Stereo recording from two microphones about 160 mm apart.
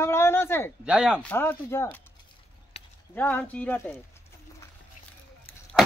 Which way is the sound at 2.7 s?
40° left (ahead or behind).